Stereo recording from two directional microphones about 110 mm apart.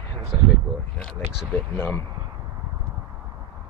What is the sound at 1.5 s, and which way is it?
Speech, 15° left (ahead or behind).